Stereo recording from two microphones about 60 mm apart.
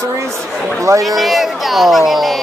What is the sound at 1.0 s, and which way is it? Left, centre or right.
Speech, centre.